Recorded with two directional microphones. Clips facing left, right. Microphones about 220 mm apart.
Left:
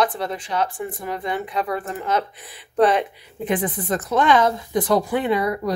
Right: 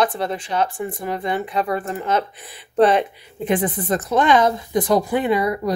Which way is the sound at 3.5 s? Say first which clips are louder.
Right 3 dB; 30° right (ahead or behind).